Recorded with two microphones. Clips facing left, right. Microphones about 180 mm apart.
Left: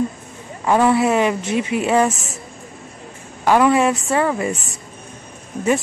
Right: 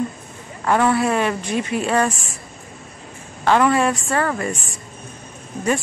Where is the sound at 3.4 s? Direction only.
15° left (ahead or behind).